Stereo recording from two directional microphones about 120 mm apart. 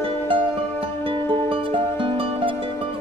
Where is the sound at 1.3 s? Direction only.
45° right (ahead or behind).